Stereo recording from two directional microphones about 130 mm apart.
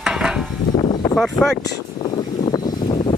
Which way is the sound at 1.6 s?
40° left (ahead or behind).